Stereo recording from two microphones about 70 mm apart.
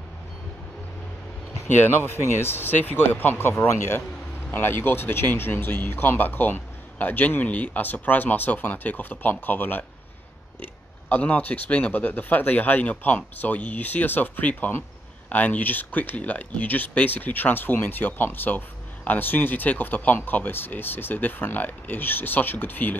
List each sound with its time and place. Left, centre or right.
1.9 s speech: left